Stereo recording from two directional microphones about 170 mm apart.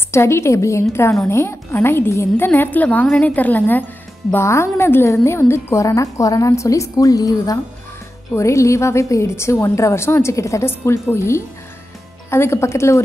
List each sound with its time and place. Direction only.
0.1 s a woman's voice: 15° left (ahead or behind)